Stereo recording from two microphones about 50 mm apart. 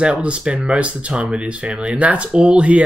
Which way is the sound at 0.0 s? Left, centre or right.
Right.